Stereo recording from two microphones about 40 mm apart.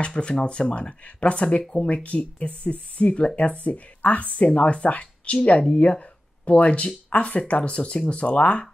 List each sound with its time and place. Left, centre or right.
0.0 s speech: left